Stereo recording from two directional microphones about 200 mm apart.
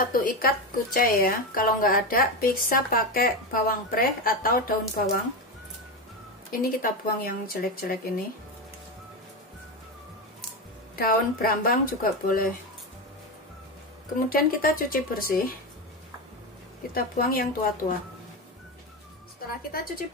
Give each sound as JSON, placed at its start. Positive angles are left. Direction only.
{"t": 0.0, "sound": "speech", "side_deg": 45}
{"t": 6.5, "sound": "speech", "side_deg": 45}
{"t": 11.0, "sound": "speech", "side_deg": 45}
{"t": 14.3, "sound": "speech", "side_deg": 45}
{"t": 16.9, "sound": "speech", "side_deg": 45}